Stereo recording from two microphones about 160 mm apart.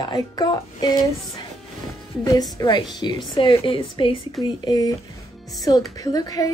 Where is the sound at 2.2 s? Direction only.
25° left (ahead or behind).